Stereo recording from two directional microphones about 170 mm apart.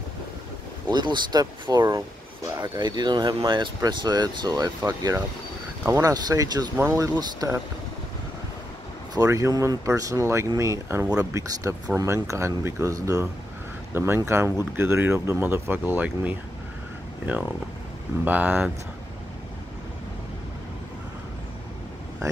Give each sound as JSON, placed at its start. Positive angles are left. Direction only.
{"t": 0.8, "sound": "speech", "side_deg": -25}
{"t": 9.1, "sound": "speech", "side_deg": -20}
{"t": 18.2, "sound": "speech", "side_deg": -10}